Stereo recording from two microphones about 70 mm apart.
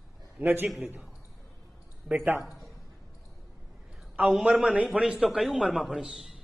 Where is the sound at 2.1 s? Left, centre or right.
Centre.